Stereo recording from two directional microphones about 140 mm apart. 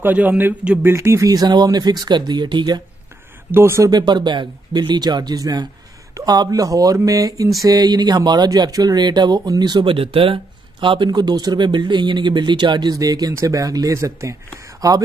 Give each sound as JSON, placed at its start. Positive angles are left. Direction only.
{"t": 0.0, "sound": "speech", "side_deg": -10}
{"t": 3.5, "sound": "speech", "side_deg": -20}
{"t": 3.9, "sound": "speech", "side_deg": -30}